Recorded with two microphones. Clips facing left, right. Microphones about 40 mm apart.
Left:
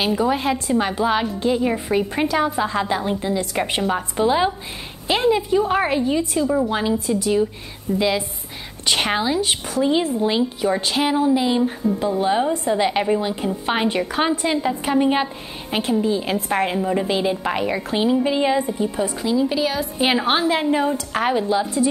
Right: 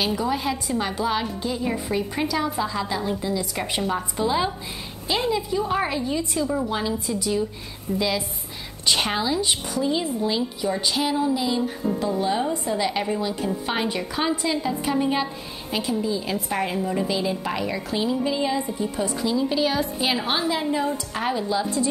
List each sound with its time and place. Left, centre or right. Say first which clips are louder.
0.0 s a woman's voice: left 4 dB; centre
6.4 s a woman's voice: left 6 dB; centre
6.7 s a woman's voice: left 5 dB; left
18.9 s a woman's voice: left 2 dB; centre
20.0 s a woman's voice: left 5 dB; left